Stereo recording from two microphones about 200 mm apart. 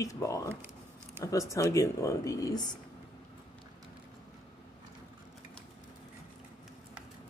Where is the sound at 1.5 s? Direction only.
15° left (ahead or behind).